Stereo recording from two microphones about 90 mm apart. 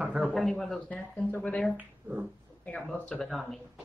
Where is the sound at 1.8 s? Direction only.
20° right (ahead or behind).